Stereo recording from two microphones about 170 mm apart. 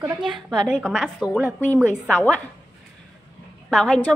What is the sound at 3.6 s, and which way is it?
Speech, 5° left (ahead or behind).